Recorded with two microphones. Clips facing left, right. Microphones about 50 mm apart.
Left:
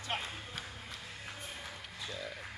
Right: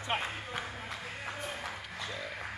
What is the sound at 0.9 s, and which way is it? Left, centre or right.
Music, right.